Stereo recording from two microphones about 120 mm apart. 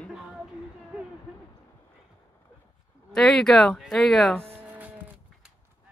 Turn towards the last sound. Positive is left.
turn(degrees=-15)  # may be behind; listen again after turning